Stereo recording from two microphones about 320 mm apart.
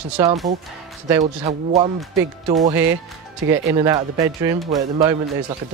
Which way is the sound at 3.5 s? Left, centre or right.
Centre.